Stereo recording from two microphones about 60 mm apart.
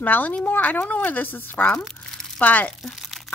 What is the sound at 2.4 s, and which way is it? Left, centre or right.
Speech, left.